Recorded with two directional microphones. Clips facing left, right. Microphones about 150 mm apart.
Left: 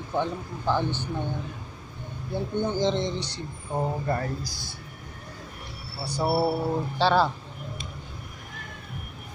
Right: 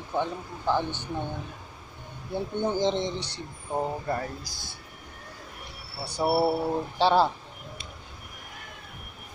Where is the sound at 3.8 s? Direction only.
10° right (ahead or behind).